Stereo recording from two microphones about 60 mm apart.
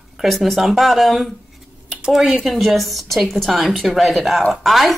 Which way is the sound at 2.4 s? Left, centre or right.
Centre.